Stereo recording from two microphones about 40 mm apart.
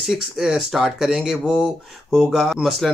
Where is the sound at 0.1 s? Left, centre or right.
Centre.